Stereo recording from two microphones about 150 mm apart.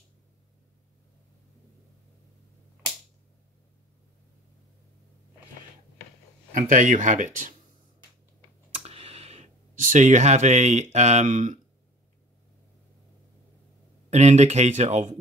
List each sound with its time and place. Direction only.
6.5 s speech: 60° right (ahead or behind)
8.7 s a sound: 40° right (ahead or behind)
14.1 s speech: 50° right (ahead or behind)